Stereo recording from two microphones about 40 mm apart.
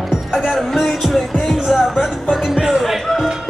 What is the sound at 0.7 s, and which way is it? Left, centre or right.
Music, centre.